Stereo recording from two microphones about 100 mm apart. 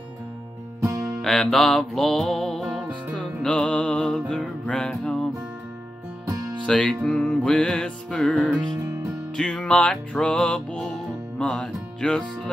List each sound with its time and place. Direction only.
1.2 s music: 5° left (ahead or behind)
6.6 s music: 5° left (ahead or behind)
8.7 s music: 30° right (ahead or behind)
9.4 s music: 10° left (ahead or behind)